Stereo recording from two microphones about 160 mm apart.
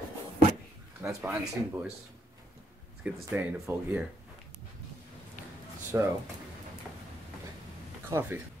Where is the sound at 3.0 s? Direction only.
15° right (ahead or behind).